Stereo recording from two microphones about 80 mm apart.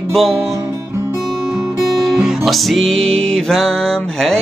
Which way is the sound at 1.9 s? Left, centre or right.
Centre.